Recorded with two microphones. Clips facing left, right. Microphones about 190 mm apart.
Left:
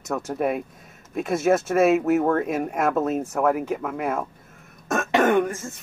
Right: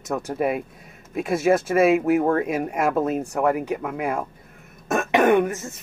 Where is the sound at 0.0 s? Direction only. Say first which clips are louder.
Right 1 dB; centre (ahead or behind).